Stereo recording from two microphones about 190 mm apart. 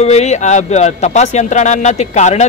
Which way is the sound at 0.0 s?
35° left (ahead or behind).